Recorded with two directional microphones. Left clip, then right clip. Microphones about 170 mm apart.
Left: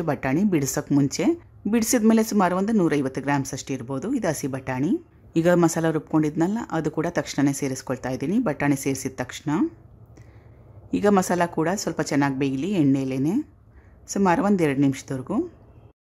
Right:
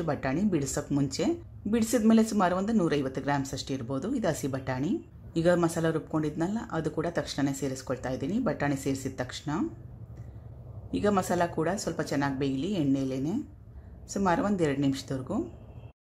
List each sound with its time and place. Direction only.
0.0 s speech: 25° left (ahead or behind)
10.9 s speech: 30° left (ahead or behind)